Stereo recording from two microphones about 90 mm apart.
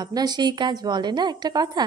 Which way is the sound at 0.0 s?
50° right (ahead or behind).